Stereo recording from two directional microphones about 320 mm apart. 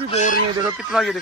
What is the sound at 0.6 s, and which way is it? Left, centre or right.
Speech, centre.